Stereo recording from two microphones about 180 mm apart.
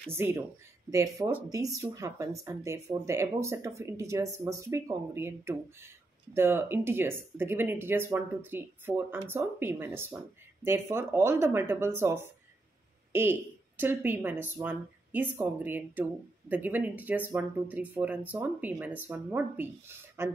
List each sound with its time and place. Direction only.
0.1 s speech: 15° right (ahead or behind)